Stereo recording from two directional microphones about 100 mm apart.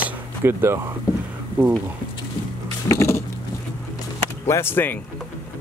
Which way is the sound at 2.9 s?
30° left (ahead or behind).